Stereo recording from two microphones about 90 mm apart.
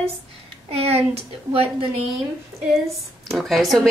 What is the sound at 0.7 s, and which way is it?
Speech, 90° right.